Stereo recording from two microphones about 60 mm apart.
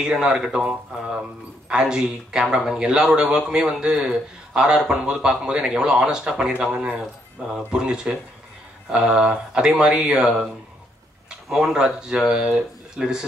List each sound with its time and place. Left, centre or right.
0.0 s a man's voice: centre
7.4 s a man's voice: centre
11.7 s a man's voice: centre